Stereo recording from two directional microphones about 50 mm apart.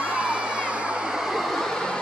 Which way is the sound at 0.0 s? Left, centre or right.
Right.